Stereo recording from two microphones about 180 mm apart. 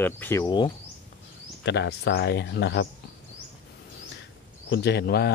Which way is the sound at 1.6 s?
75° left (ahead or behind).